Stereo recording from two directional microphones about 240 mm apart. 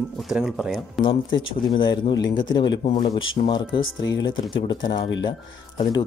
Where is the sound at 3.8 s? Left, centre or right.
Left.